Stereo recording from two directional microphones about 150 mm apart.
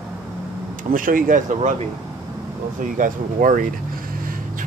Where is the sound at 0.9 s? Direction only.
65° right (ahead or behind).